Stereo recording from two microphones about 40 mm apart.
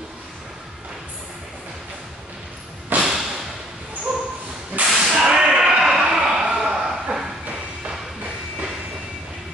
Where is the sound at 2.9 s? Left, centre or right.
Right.